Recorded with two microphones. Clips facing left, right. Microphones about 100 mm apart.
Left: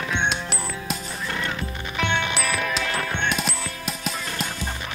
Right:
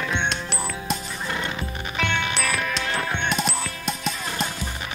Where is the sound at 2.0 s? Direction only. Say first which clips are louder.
Left 1 dB; 5° left (ahead or behind).